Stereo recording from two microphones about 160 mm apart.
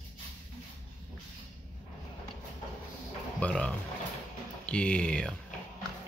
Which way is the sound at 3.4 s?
5° left (ahead or behind).